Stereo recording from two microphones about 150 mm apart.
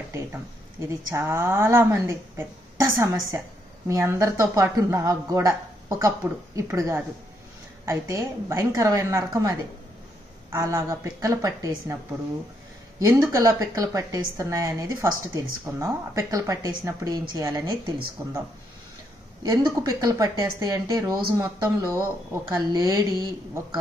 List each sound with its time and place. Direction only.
0.1 s a woman's voice: 15° right (ahead or behind)
10.5 s a woman's voice: 20° right (ahead or behind)
13.0 s a woman's voice: 20° right (ahead or behind)
19.4 s a woman's voice: 25° right (ahead or behind)